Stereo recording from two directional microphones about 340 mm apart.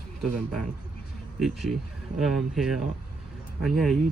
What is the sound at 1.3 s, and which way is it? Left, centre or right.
Speech, centre.